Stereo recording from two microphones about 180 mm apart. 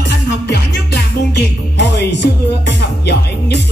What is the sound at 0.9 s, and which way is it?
Music, 65° left (ahead or behind).